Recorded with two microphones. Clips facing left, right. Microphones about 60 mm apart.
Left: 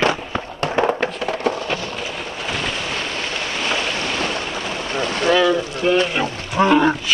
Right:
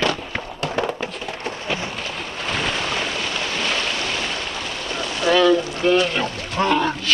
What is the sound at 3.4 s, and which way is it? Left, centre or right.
Boat, centre.